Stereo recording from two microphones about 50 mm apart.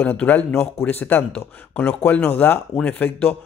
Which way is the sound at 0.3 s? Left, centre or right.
Left.